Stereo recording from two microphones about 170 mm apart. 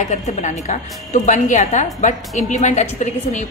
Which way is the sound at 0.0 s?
45° left (ahead or behind).